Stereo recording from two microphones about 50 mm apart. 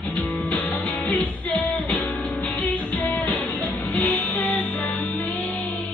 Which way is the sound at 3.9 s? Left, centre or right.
Left.